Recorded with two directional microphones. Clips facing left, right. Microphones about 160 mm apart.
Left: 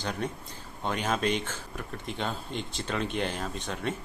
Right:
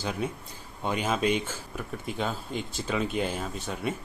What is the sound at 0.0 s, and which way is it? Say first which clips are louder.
Speech: right 2 dB; 5° right (ahead or behind).